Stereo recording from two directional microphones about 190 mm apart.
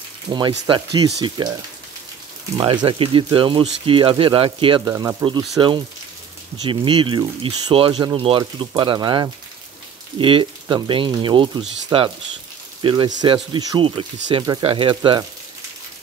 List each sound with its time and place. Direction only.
0.3 s speech: 25° right (ahead or behind)
2.5 s speech: 25° right (ahead or behind)
6.6 s speech: 25° right (ahead or behind)